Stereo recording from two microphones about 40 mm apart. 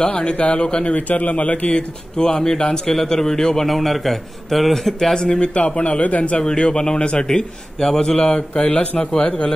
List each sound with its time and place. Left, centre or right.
0.0 s a man's voice: left
0.9 s a man's voice: left; by 3.6 s centre
3.6 s a man's voice: centre
5.2 s a man's voice: left
6.4 s a man's voice: centre
8.4 s a man's voice: left